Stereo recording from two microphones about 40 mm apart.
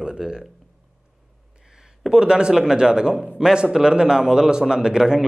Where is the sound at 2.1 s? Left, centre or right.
Right.